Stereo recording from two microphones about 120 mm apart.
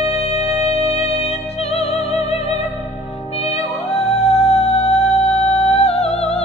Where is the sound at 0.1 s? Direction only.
60° left (ahead or behind).